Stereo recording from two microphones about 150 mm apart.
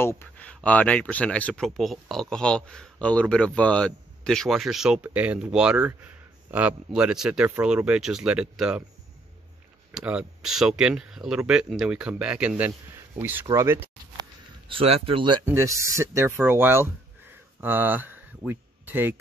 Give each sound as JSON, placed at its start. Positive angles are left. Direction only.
{"t": 0.0, "sound": "speech", "side_deg": 15}
{"t": 9.9, "sound": "speech", "side_deg": -5}
{"t": 14.7, "sound": "speech", "side_deg": -40}
{"t": 15.4, "sound": "speech", "side_deg": -20}